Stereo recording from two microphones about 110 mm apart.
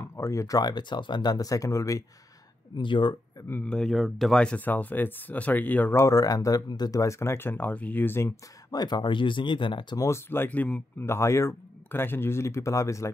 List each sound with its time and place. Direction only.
0.1 s speech: 30° left (ahead or behind)
2.8 s speech: 45° left (ahead or behind)
3.6 s speech: 5° left (ahead or behind); by 8.3 s 20° left (ahead or behind)
8.7 s speech: 40° left (ahead or behind)
9.9 s speech: 25° left (ahead or behind)